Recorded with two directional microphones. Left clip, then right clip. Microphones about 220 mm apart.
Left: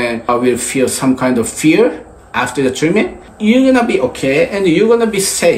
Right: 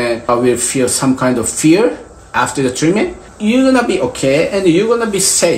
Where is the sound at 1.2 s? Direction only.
5° right (ahead or behind).